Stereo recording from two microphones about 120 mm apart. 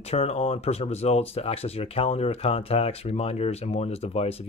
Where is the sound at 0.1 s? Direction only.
60° left (ahead or behind).